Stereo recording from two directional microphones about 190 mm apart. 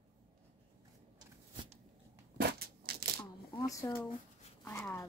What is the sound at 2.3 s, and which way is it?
Crushing, 55° right (ahead or behind).